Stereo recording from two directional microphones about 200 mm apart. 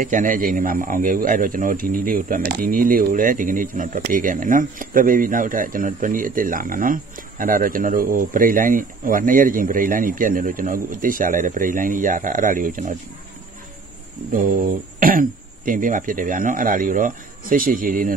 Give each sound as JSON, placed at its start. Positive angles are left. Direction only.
{"t": 0.0, "sound": "speech", "side_deg": -40}
{"t": 15.0, "sound": "speech", "side_deg": -45}